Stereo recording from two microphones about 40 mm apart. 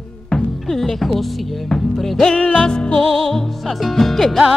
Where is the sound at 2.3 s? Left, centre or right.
Left.